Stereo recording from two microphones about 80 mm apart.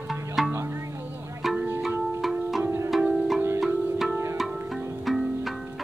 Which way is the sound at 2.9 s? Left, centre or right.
Centre.